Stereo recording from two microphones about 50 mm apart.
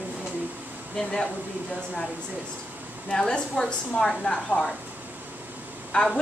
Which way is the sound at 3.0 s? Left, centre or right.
Centre.